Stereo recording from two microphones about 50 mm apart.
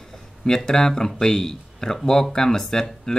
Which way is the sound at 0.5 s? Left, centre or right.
Centre.